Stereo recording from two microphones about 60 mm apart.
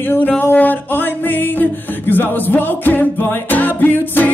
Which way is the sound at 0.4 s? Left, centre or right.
Left.